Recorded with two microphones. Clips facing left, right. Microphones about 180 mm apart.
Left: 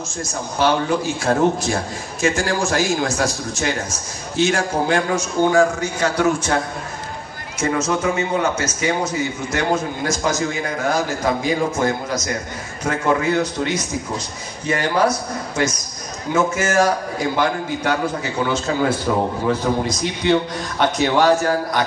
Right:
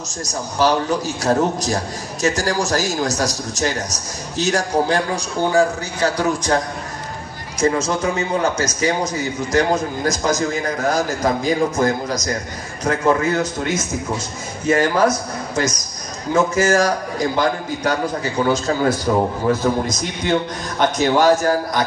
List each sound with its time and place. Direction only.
0.2 s a man's voice: 40° right (ahead or behind)
7.9 s a man's voice: 35° right (ahead or behind)